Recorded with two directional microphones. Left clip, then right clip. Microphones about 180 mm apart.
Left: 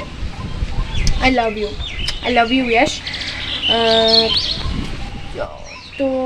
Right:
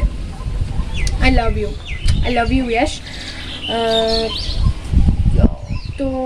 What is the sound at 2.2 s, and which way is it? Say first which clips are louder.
Speech: left 3 dB; 10° right (ahead or behind).